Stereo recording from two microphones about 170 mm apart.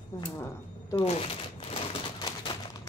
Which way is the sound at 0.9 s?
35° left (ahead or behind).